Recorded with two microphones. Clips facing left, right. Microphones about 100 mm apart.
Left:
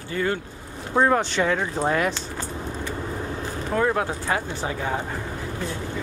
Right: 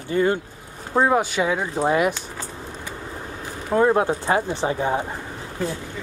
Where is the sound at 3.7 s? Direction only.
25° right (ahead or behind).